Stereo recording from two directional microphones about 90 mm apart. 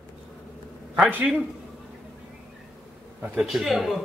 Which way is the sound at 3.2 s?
10° right (ahead or behind).